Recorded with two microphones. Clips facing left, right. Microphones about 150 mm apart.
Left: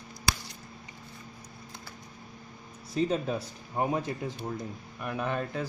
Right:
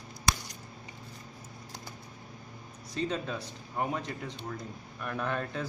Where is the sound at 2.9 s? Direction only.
25° left (ahead or behind).